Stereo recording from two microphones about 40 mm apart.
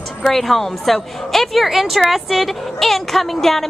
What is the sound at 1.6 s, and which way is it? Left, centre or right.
A woman's voice, centre.